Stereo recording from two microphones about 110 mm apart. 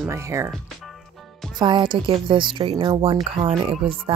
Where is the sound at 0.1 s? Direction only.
25° right (ahead or behind).